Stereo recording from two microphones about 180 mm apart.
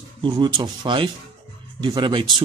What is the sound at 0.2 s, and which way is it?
Speech, 25° right (ahead or behind).